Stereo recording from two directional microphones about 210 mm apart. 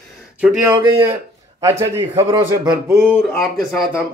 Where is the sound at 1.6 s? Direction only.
15° right (ahead or behind).